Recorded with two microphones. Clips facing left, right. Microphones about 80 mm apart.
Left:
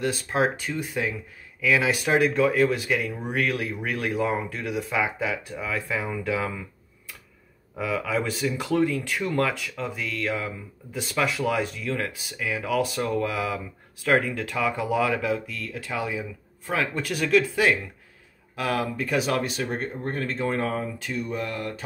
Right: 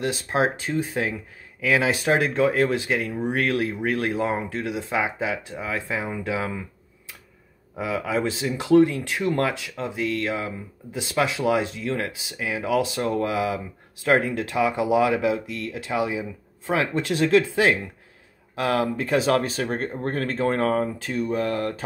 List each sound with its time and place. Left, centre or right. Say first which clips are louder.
0.1 s speech: right 1 dB; right
7.7 s speech: right 1 dB; right
19.4 s speech: right 2 dB; right